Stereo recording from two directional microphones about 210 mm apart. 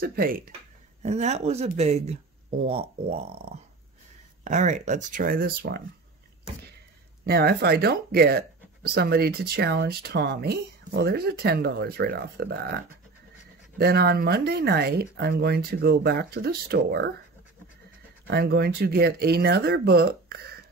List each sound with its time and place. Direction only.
0.0 s speech: 45° right (ahead or behind)
1.0 s speech: 30° right (ahead or behind)
3.3 s speech: 50° right (ahead or behind)
4.5 s speech: 35° right (ahead or behind)
7.2 s speech: 50° right (ahead or behind)
18.2 s speech: 50° right (ahead or behind)